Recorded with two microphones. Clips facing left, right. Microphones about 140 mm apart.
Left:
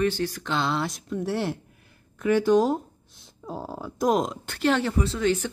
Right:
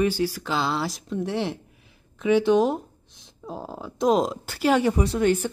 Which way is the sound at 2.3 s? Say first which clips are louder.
Right 1 dB; 20° right (ahead or behind).